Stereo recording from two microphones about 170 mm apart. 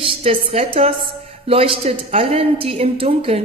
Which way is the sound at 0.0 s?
35° right (ahead or behind).